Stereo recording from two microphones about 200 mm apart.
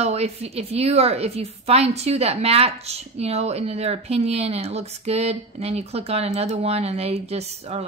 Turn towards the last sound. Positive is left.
turn(degrees=-30)  # may be behind; listen again after turning